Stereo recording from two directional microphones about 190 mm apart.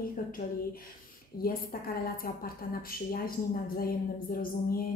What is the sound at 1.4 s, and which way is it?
A woman's voice, 50° left (ahead or behind).